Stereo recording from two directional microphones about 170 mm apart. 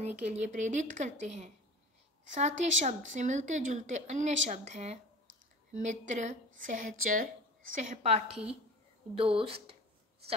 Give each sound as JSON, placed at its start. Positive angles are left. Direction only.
{"t": 0.0, "sound": "speech", "side_deg": -40}